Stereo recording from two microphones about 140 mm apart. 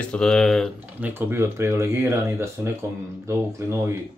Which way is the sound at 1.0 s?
15° right (ahead or behind).